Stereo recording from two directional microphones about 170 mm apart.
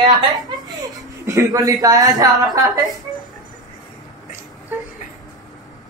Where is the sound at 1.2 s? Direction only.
20° right (ahead or behind).